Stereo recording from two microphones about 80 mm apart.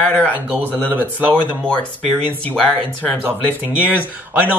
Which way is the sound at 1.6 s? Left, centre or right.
Centre.